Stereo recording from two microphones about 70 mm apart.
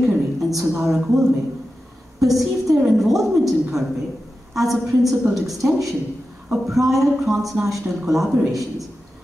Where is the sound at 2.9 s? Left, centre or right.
Centre.